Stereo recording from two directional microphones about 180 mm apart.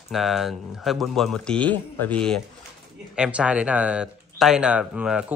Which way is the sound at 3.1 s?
5° right (ahead or behind).